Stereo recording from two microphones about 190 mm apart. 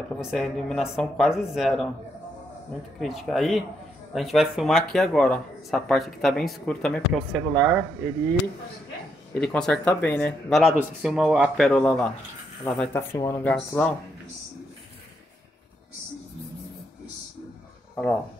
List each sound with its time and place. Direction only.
0.2 s speech: centre (ahead or behind)
3.0 s speech: centre (ahead or behind)
9.3 s speech: 5° left (ahead or behind)
10.5 s speech: 5° right (ahead or behind)
17.9 s speech: 10° left (ahead or behind)